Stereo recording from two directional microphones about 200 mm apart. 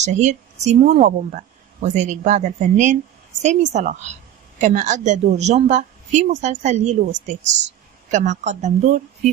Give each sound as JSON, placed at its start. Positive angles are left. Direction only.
{"t": 0.0, "sound": "a woman's voice", "side_deg": -35}